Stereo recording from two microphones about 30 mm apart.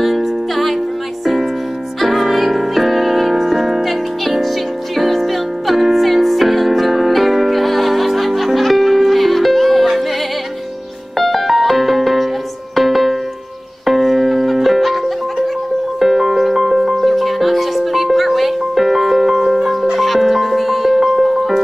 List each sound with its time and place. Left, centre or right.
0.0 s music: centre
2.0 s music: centre
11.1 s music: centre
16.0 s music: centre
16.9 s music: centre